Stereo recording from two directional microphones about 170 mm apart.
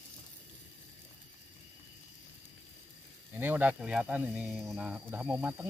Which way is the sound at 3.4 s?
10° right (ahead or behind).